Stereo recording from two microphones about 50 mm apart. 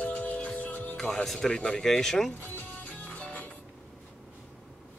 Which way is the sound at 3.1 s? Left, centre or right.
Left.